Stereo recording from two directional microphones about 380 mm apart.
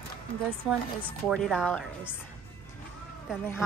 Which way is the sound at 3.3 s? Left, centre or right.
Centre.